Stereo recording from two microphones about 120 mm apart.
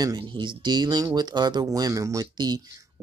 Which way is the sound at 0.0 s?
35° right (ahead or behind).